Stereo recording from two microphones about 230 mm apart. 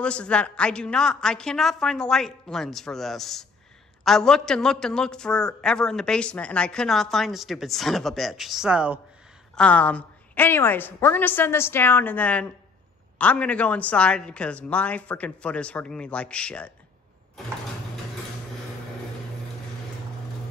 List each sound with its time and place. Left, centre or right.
0.0 s a woman's voice: centre
9.6 s a woman's voice: centre